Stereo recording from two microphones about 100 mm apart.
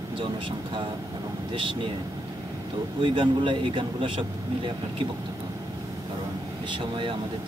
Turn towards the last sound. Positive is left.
turn(degrees=-60)  # may be behind; listen again after turning